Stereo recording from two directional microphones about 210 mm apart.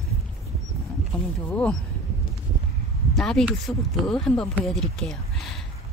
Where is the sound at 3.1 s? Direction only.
Centre (ahead or behind).